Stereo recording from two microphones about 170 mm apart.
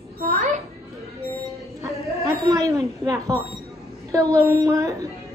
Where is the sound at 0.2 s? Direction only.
40° right (ahead or behind).